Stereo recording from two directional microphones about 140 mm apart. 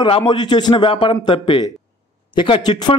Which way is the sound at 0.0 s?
35° left (ahead or behind).